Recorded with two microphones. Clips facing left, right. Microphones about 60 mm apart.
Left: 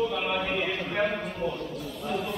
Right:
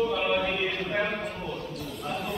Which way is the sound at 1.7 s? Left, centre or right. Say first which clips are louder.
Left 1 dB; right.